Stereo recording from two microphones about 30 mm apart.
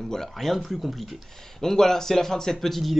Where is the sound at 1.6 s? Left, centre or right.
Centre.